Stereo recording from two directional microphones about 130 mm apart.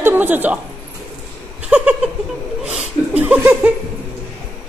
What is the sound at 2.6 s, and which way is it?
Laughter, 5° right (ahead or behind).